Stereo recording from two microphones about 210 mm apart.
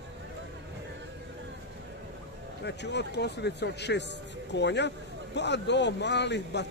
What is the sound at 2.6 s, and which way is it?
Speech, 55° left (ahead or behind).